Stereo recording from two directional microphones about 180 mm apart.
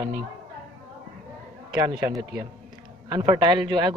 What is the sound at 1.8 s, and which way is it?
Speech, 20° right (ahead or behind).